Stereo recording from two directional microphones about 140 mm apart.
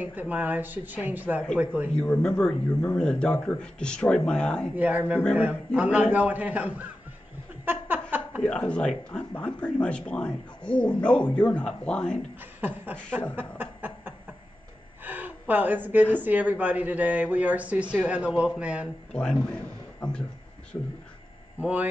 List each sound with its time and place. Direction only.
0.0 s a woman's voice: 10° right (ahead or behind)
2.0 s speech: 5° left (ahead or behind)
4.7 s a woman's voice: 10° right (ahead or behind)
7.6 s a sound: 15° right (ahead or behind)
8.4 s speech: 5° left (ahead or behind)
12.5 s speech: 15° right (ahead or behind)
13.4 s chuckle: 15° right (ahead or behind)
15.0 s a woman's voice: 10° right (ahead or behind)
19.1 s speech: 5° left (ahead or behind)
20.7 s speech: 20° left (ahead or behind)
21.5 s speech: 10° right (ahead or behind)